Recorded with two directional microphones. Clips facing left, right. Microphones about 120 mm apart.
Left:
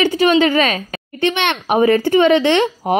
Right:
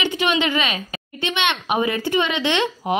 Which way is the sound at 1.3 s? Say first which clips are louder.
Even; 55° left (ahead or behind).